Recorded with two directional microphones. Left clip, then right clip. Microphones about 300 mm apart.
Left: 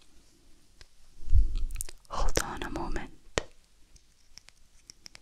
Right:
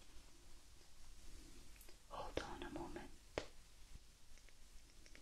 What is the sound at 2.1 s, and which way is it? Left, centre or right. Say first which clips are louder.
Whispering: left 15 dB; left.